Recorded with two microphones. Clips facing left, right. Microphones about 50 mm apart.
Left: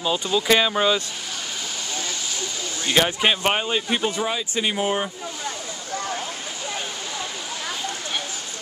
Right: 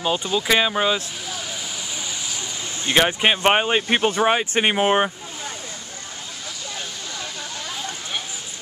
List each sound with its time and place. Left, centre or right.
0.0 s speech: centre
2.9 s speech: right